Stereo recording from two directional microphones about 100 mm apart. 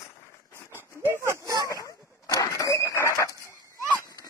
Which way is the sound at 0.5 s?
20° right (ahead or behind).